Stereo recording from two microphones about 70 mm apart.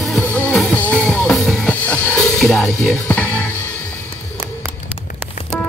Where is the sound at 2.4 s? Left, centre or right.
Centre.